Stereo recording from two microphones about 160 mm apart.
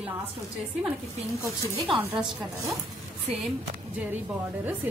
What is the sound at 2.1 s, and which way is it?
Speech, centre (ahead or behind).